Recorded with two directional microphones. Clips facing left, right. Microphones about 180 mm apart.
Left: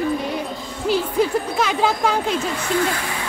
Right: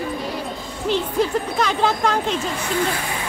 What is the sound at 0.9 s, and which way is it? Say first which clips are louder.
Speech: left 1 dB; 5° left (ahead or behind).